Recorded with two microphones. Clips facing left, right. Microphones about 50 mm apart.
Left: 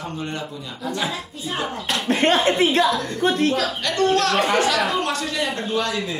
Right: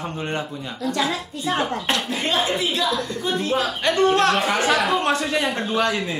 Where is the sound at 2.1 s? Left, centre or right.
Left.